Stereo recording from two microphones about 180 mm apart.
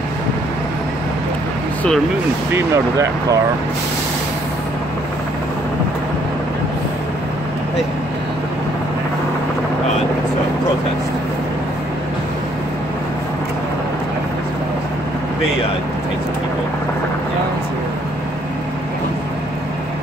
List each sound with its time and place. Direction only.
2.5 s speech: 15° right (ahead or behind)